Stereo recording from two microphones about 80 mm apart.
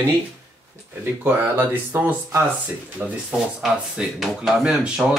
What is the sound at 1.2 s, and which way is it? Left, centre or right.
Speech, right.